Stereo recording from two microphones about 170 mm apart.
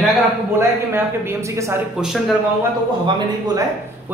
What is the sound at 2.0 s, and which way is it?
Speech, centre (ahead or behind).